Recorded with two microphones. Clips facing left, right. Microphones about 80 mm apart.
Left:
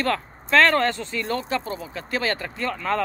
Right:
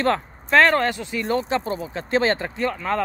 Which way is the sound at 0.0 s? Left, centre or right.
Right.